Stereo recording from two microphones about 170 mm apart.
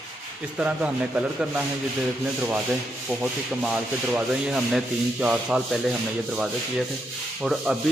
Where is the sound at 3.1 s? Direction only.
5° right (ahead or behind).